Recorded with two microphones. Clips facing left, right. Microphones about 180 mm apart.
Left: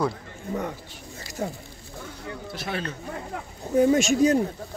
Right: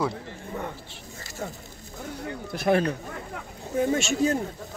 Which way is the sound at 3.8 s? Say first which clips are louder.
Left 5 dB; 40° left (ahead or behind).